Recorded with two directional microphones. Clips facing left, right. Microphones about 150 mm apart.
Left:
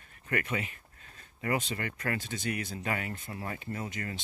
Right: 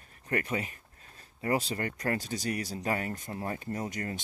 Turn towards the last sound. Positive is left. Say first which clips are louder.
# right 3 dB
turn(degrees=-45)  # may be behind; listen again after turning